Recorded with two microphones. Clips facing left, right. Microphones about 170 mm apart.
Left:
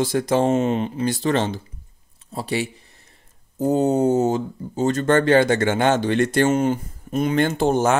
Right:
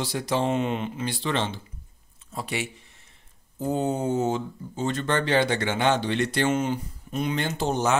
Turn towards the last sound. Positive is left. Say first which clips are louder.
# left 6 dB
turn(degrees=50)  # may be behind; listen again after turning